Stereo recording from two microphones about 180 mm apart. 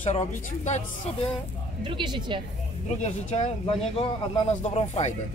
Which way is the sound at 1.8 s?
25° right (ahead or behind).